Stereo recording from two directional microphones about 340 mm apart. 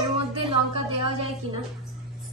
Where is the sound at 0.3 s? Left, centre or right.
Centre.